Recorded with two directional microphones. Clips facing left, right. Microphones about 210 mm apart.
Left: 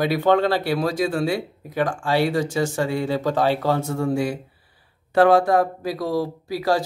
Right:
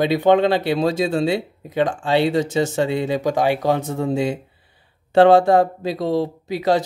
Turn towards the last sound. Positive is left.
turn(degrees=-20)  # may be behind; listen again after turning